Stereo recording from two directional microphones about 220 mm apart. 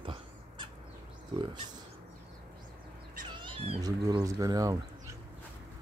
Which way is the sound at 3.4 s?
25° right (ahead or behind).